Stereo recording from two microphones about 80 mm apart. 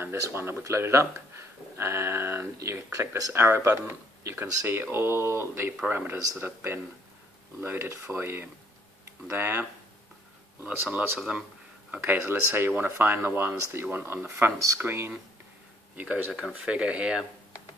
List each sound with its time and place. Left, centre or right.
0.3 s speech: right
11.1 s speech: centre
11.9 s speech: right
16.3 s speech: centre
16.5 s speech: centre